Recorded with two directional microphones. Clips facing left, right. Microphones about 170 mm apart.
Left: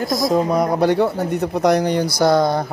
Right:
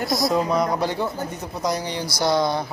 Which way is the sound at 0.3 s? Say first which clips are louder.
Left 5 dB; 45° left (ahead or behind).